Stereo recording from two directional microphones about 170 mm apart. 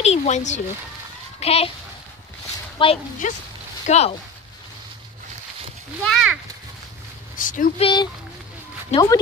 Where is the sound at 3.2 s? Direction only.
50° left (ahead or behind).